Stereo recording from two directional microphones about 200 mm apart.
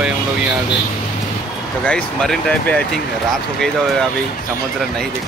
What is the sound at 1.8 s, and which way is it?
Speech, 5° left (ahead or behind).